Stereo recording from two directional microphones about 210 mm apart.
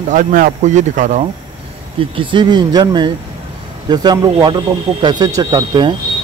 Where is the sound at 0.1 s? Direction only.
40° right (ahead or behind).